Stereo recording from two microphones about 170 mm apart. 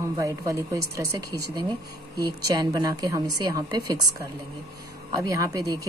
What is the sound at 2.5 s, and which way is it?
Speech, 20° right (ahead or behind).